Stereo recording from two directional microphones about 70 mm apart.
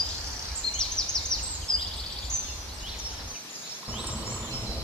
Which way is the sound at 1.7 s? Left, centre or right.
Centre.